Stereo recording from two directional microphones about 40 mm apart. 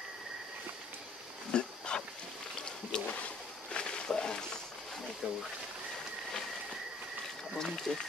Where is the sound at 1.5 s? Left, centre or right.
Left.